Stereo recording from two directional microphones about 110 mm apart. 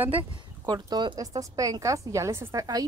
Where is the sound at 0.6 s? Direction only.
40° right (ahead or behind).